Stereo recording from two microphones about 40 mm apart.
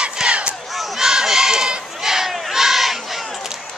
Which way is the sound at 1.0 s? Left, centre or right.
Centre.